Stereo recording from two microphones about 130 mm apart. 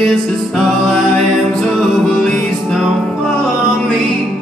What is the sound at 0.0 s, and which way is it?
Music, 5° left (ahead or behind).